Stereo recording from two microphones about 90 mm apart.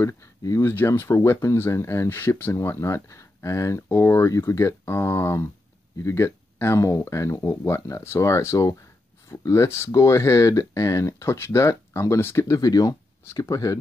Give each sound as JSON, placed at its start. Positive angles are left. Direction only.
{"t": 0.0, "sound": "speech", "side_deg": 35}
{"t": 12.5, "sound": "speech", "side_deg": 45}